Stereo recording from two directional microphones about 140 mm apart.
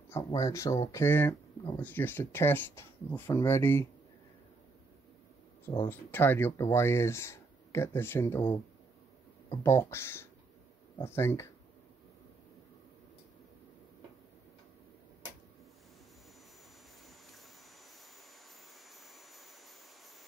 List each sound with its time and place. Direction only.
0.3 s speech: 25° left (ahead or behind)
5.7 s speech: 15° left (ahead or behind)
18.9 s a sound: centre (ahead or behind)